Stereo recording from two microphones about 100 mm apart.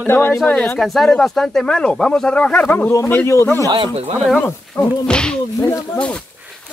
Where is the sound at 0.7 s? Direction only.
5° left (ahead or behind); by 3.6 s 30° left (ahead or behind).